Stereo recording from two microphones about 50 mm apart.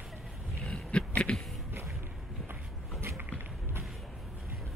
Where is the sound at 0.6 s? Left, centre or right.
Left.